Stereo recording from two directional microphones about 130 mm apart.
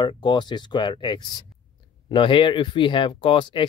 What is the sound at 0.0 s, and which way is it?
Speech, 35° left (ahead or behind).